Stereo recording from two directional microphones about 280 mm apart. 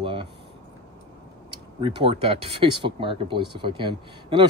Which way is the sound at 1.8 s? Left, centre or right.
Centre.